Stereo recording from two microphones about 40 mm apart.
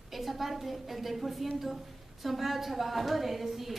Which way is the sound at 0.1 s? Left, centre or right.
Centre.